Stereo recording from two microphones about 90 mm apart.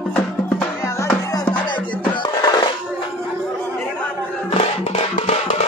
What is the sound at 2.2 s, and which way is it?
Music, 50° left (ahead or behind).